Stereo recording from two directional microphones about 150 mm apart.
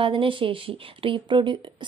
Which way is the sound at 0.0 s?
35° right (ahead or behind).